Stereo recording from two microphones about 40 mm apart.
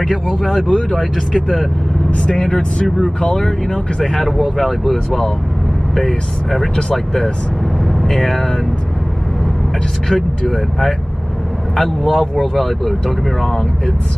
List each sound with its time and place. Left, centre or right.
0.1 s speech: centre
2.0 s speech: left
3.4 s speech: centre
5.9 s speech: centre
10.0 s speech: centre